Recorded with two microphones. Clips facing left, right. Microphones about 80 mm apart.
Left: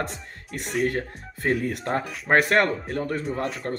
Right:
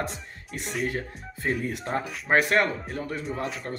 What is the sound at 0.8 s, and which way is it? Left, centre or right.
Speech, left.